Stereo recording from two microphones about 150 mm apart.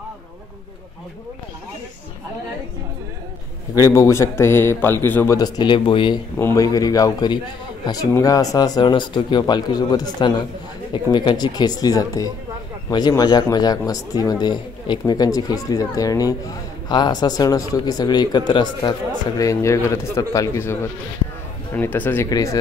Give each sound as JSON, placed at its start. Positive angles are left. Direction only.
{"t": 3.9, "sound": "speech", "side_deg": 20}
{"t": 5.4, "sound": "speech", "side_deg": 30}
{"t": 6.3, "sound": "speech", "side_deg": 20}
{"t": 21.7, "sound": "speech", "side_deg": 10}